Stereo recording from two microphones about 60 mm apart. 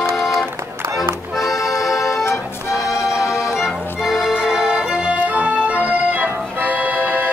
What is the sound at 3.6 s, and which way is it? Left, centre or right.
Accordion, centre.